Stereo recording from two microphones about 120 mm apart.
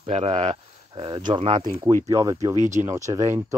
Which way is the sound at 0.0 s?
60° right (ahead or behind).